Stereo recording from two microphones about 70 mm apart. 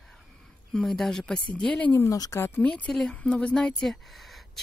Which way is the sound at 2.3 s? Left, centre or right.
Left.